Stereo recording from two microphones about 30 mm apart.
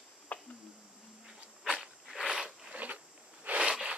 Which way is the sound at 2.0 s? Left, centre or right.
Centre.